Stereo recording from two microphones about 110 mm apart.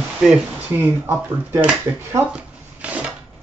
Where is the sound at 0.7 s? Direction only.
20° right (ahead or behind).